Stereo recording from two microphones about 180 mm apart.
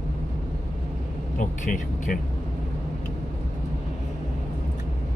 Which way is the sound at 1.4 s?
50° left (ahead or behind).